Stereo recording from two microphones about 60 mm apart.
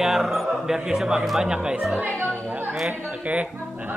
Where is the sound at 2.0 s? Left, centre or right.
Right.